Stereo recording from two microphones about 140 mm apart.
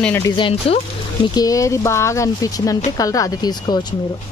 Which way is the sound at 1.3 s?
25° left (ahead or behind).